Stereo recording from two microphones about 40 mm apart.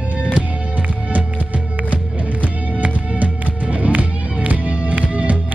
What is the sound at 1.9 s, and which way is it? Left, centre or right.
Music, right.